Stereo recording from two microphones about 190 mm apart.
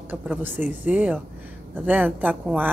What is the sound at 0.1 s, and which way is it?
A woman's voice, 10° right (ahead or behind).